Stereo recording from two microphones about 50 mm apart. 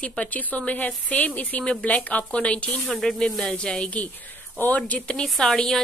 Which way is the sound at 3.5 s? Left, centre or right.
Centre.